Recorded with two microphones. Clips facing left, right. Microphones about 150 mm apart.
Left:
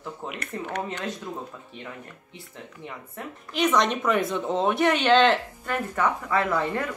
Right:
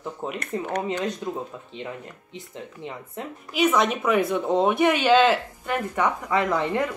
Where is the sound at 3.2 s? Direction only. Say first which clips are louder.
Right 3 dB; 20° right (ahead or behind).